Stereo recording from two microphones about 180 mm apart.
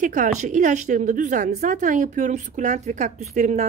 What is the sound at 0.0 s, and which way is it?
A woman's voice, 45° right (ahead or behind).